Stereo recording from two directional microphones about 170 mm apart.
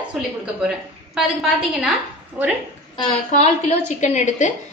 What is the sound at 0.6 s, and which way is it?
A woman's voice, 5° right (ahead or behind).